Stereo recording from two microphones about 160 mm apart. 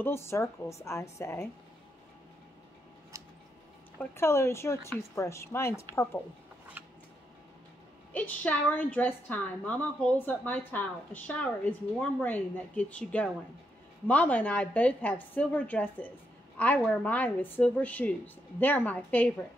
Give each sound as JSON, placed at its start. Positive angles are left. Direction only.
{"t": 0.0, "sound": "a woman's voice", "side_deg": 15}
{"t": 4.0, "sound": "a woman's voice", "side_deg": 15}
{"t": 6.8, "sound": "a sound", "side_deg": -10}
{"t": 8.1, "sound": "a woman's voice", "side_deg": 10}